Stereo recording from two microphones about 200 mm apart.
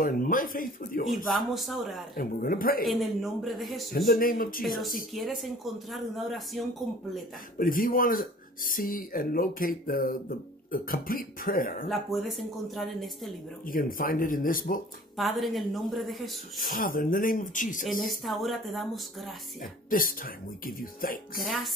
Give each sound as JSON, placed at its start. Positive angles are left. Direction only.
{"t": 0.0, "sound": "speech", "side_deg": 45}
{"t": 1.0, "sound": "speech", "side_deg": 0}
{"t": 2.1, "sound": "speech", "side_deg": 45}
{"t": 2.8, "sound": "speech", "side_deg": 0}
{"t": 3.9, "sound": "speech", "side_deg": 45}
{"t": 4.6, "sound": "speech", "side_deg": 0}
{"t": 7.5, "sound": "speech", "side_deg": 45}
{"t": 11.9, "sound": "speech", "side_deg": 0}
{"t": 13.7, "sound": "speech", "side_deg": 45}
{"t": 15.1, "sound": "speech", "side_deg": 0}
{"t": 16.5, "sound": "speech", "side_deg": 45}
{"t": 18.0, "sound": "speech", "side_deg": 0}
{"t": 19.6, "sound": "speech", "side_deg": 45}